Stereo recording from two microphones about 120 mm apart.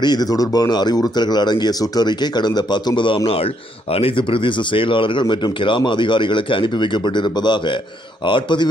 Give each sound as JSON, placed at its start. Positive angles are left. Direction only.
{"t": 0.0, "sound": "speech", "side_deg": 35}
{"t": 3.3, "sound": "speech", "side_deg": 55}